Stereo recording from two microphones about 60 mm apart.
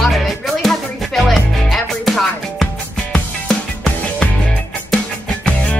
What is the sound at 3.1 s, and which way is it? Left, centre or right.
Music, centre.